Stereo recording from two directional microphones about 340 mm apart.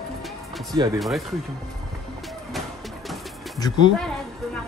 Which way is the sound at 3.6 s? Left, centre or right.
Centre.